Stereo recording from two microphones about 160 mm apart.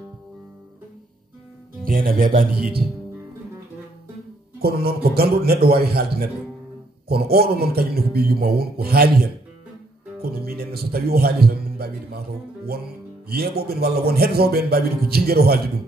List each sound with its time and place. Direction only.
1.9 s speech: 65° right (ahead or behind)
4.6 s a man's voice: 75° right (ahead or behind)
13.3 s a man's voice: 75° right (ahead or behind)